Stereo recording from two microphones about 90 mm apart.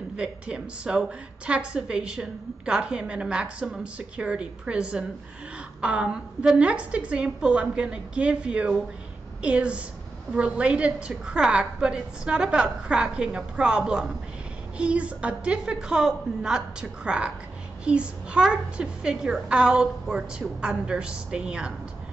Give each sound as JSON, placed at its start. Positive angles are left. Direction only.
{"t": 0.2, "sound": "a woman's voice", "side_deg": -10}